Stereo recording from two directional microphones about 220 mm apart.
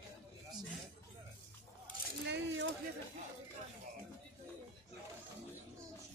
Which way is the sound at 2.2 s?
55° right (ahead or behind).